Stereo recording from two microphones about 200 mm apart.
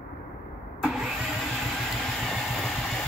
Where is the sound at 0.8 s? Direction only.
Centre (ahead or behind).